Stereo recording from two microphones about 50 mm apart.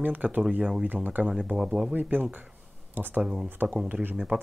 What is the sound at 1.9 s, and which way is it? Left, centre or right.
Speech, right.